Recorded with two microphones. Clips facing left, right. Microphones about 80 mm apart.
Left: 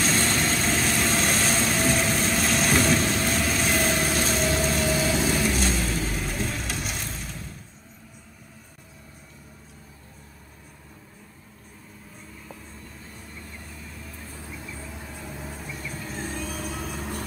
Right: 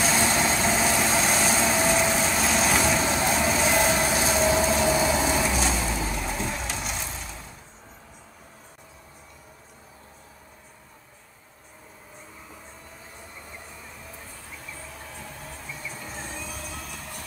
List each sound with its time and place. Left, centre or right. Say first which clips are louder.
0.0 s vehicle: right 1 dB; centre
4.7 s vehicle: right 2 dB; right
5.4 s vehicle: even; centre
13.4 s vehicle: even; centre
16.5 s vehicle: left 5 dB; left